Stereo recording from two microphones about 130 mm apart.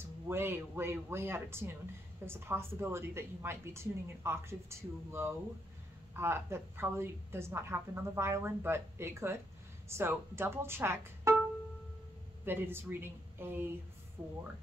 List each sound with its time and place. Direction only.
0.0 s a woman's voice: 20° right (ahead or behind)
12.4 s speech: 15° right (ahead or behind)